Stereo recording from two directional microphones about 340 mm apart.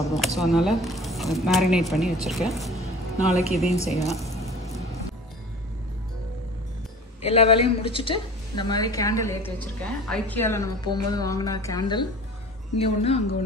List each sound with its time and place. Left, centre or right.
0.0 s a woman's voice: centre
7.2 s a woman's voice: centre